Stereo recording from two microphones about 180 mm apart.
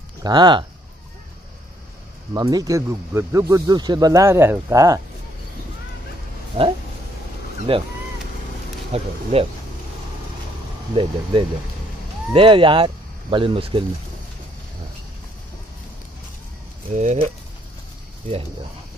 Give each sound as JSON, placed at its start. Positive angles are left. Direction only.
{"t": 0.2, "sound": "speech", "side_deg": -25}
{"t": 2.3, "sound": "speech", "side_deg": -20}
{"t": 6.6, "sound": "speech", "side_deg": -30}
{"t": 8.9, "sound": "speech", "side_deg": -35}
{"t": 10.9, "sound": "speech", "side_deg": -30}
{"t": 12.3, "sound": "speech", "side_deg": -30}
{"t": 16.9, "sound": "speech", "side_deg": -40}